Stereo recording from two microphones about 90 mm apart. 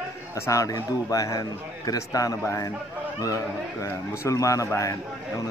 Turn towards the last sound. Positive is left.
turn(degrees=35)  # may be behind; listen again after turning